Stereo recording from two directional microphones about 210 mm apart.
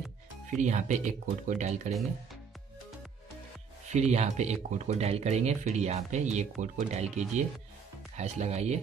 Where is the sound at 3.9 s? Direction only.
30° right (ahead or behind).